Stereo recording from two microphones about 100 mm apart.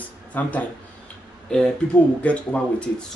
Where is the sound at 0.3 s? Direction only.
15° left (ahead or behind).